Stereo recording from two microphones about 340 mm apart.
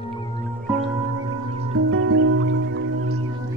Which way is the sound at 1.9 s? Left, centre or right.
Right.